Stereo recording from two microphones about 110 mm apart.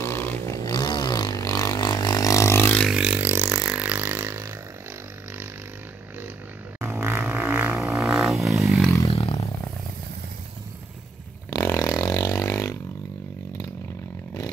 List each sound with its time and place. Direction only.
0.0 s a sound: 20° left (ahead or behind)
0.7 s vehicle: 40° left (ahead or behind); by 2.8 s 20° left (ahead or behind)
2.9 s vehicle: 10° right (ahead or behind); by 4.6 s 25° right (ahead or behind)
6.8 s vehicle: 25° right (ahead or behind)
8.0 s a sound: centre (ahead or behind)
9.1 s roar: 65° left (ahead or behind)
11.5 s vehicle: 25° left (ahead or behind)